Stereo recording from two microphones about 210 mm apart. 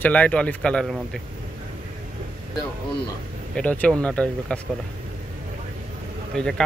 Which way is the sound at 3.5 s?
5° left (ahead or behind).